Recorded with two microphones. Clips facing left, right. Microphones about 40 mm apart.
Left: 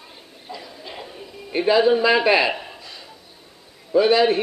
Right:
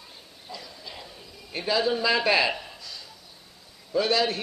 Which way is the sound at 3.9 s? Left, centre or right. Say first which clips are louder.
Left 8 dB; left.